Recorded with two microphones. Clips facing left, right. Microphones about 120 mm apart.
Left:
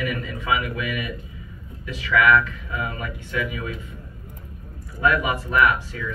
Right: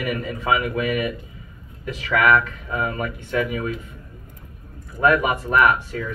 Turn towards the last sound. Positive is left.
turn(degrees=-45)  # may be behind; listen again after turning